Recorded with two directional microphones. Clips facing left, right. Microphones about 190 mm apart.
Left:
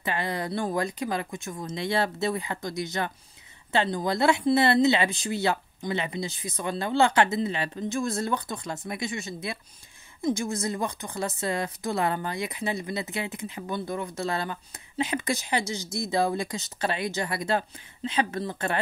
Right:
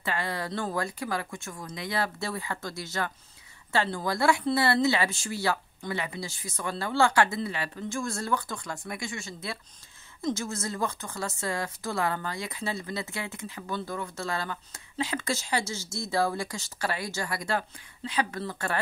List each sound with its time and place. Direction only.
0.0 s speech: 20° left (ahead or behind)